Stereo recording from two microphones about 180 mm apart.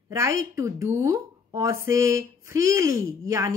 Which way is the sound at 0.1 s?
15° right (ahead or behind).